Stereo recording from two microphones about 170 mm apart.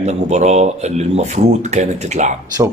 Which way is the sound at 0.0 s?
40° right (ahead or behind).